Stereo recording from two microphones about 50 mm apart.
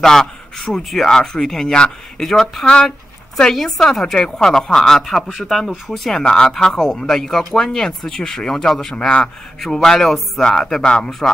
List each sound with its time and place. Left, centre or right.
0.0 s a man's voice: centre
10.4 s speech: centre